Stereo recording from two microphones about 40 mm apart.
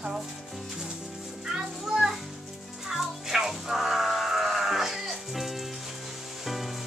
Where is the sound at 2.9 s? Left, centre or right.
Centre.